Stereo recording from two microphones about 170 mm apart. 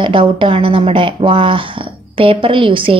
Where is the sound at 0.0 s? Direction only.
30° right (ahead or behind).